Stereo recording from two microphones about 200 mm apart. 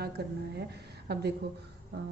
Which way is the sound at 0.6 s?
55° right (ahead or behind).